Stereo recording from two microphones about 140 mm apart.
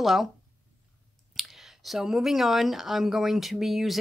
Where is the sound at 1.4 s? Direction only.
Centre (ahead or behind).